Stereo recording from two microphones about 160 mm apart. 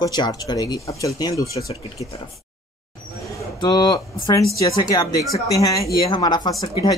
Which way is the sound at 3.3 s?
25° left (ahead or behind).